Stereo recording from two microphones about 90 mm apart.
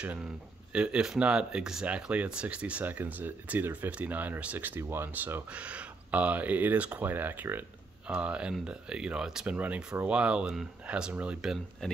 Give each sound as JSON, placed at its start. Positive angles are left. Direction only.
{"t": 0.0, "sound": "speech", "side_deg": -15}
{"t": 11.8, "sound": "speech", "side_deg": 5}